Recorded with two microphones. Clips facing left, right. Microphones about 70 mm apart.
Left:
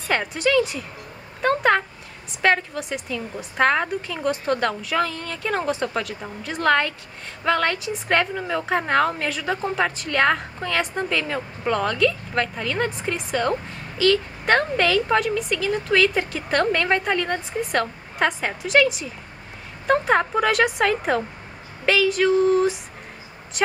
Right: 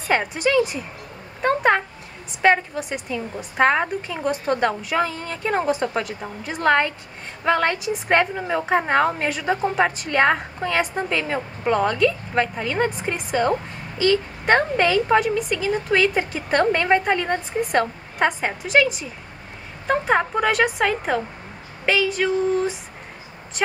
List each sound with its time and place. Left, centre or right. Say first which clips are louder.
0.1 s a woman's voice: right 1 dB; centre